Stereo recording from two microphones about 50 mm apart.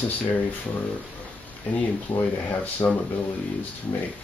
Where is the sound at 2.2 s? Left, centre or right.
Left.